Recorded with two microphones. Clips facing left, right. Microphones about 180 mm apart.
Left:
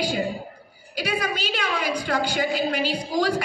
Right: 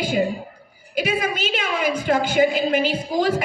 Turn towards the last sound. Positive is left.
turn(degrees=-25)  # may be behind; listen again after turning